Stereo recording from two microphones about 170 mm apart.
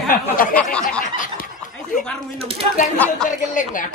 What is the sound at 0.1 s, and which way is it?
Speech, 55° left (ahead or behind).